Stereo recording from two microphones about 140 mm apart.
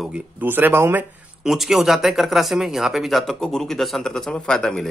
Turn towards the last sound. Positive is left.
turn(degrees=5)  # may be behind; listen again after turning